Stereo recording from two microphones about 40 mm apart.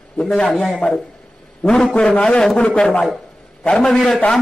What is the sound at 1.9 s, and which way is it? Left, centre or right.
A man's voice, left.